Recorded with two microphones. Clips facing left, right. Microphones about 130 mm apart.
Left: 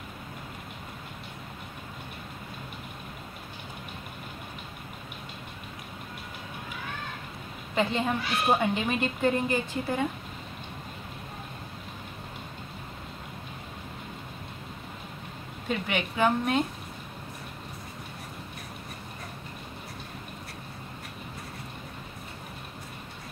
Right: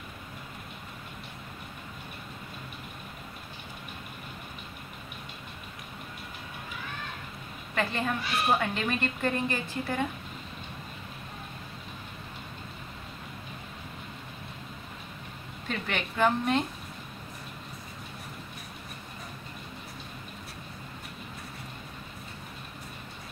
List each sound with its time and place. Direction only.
7.7 s a woman's voice: 20° left (ahead or behind)
15.7 s a woman's voice: 10° left (ahead or behind)